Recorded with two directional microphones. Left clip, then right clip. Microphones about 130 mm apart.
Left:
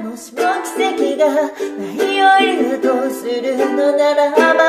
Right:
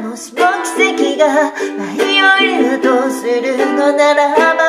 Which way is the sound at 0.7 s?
20° left (ahead or behind).